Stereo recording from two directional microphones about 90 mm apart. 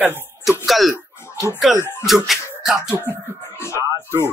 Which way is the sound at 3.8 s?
30° right (ahead or behind).